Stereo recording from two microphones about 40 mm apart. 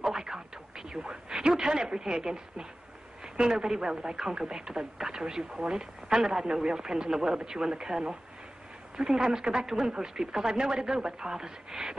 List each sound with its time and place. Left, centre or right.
0.1 s radio: centre
1.3 s a woman's voice: centre